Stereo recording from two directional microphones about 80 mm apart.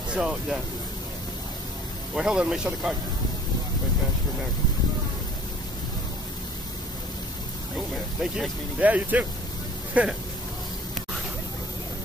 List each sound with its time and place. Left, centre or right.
0.1 s speech: centre
2.1 s speech: centre
7.9 s speech: centre
8.7 s speech: centre